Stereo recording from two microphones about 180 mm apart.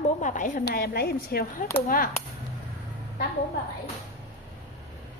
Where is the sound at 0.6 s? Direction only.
60° left (ahead or behind).